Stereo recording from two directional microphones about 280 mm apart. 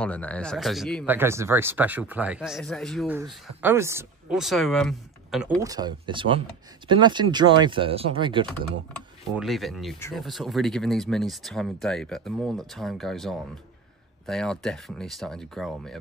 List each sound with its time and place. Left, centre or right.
0.0 s speech: centre
5.6 s speech: centre
9.3 s speech: centre